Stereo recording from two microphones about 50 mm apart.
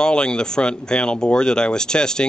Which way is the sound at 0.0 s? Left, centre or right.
Centre.